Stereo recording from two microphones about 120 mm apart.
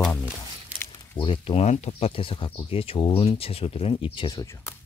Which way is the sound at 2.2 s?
45° left (ahead or behind).